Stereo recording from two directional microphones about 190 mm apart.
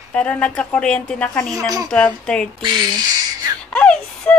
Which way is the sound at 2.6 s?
25° right (ahead or behind).